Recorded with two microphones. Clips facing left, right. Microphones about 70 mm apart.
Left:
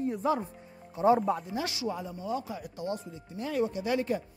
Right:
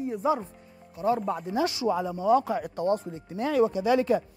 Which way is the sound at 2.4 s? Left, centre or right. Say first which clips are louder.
Right 9 dB; right.